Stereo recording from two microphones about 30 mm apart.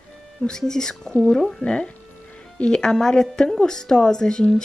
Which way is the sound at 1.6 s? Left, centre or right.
Left.